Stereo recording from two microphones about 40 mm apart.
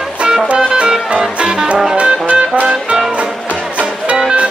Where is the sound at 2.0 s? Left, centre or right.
Right.